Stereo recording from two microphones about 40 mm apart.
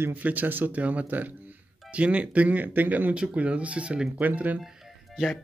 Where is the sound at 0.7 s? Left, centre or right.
Right.